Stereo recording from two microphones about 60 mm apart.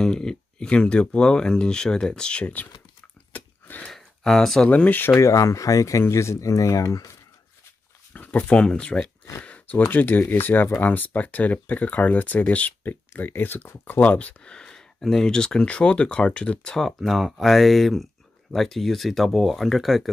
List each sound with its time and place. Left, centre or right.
0.0 s speech: centre
3.3 s a sound: left
3.9 s a sound: centre
4.6 s speech: left
5.1 s speech: left
8.1 s a sound: left
8.5 s speech: centre
9.4 s a sound: left
9.8 s speech: left
13.1 s speech: left
14.0 s speech: left
16.7 s speech: centre